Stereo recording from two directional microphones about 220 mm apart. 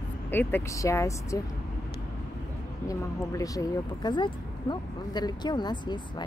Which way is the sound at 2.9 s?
15° left (ahead or behind).